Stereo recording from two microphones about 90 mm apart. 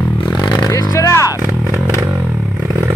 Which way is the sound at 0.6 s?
45° left (ahead or behind).